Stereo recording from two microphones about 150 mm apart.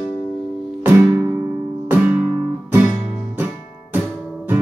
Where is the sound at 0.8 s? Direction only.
15° right (ahead or behind).